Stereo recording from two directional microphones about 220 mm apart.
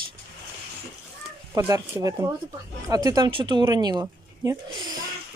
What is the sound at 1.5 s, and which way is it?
A child's voice, 15° right (ahead or behind).